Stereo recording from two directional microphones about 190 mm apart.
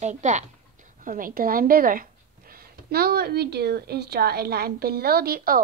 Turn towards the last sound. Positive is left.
turn(degrees=-50)  # may be behind; listen again after turning